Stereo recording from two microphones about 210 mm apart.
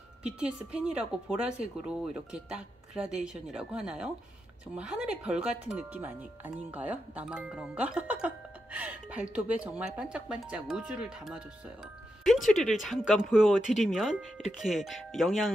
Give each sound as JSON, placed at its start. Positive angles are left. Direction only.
{"t": 0.2, "sound": "speech", "side_deg": -5}